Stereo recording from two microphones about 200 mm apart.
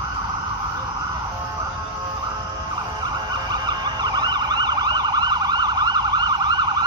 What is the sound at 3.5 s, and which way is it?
Emergency vehicle, 20° right (ahead or behind).